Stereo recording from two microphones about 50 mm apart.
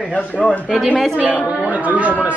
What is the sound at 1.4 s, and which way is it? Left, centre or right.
Speech, right.